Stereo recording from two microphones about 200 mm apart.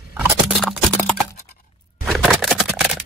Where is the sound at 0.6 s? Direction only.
5° left (ahead or behind).